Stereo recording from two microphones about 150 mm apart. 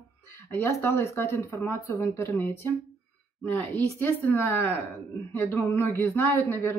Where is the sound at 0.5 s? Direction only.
15° left (ahead or behind).